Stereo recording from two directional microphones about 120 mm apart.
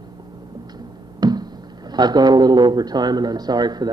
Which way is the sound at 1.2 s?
35° right (ahead or behind).